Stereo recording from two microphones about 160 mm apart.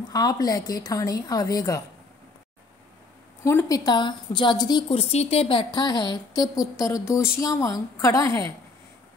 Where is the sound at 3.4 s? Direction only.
15° left (ahead or behind).